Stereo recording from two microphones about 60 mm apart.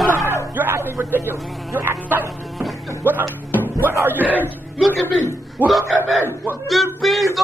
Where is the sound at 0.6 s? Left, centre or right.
Right.